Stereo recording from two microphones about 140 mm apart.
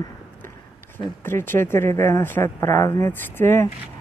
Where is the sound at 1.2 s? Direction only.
15° left (ahead or behind).